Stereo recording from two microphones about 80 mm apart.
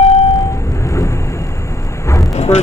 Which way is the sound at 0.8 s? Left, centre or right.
Left.